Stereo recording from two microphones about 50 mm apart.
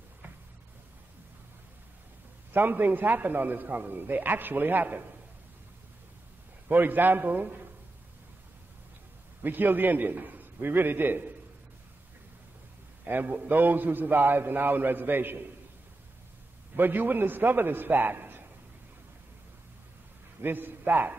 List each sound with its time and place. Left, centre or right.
2.5 s a man's voice: right
6.7 s a man's voice: right
9.4 s a man's voice: right
13.0 s a man's voice: right
16.7 s a man's voice: right
20.4 s a man's voice: right